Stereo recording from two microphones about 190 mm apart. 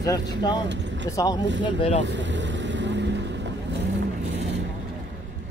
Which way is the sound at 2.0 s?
70° right (ahead or behind).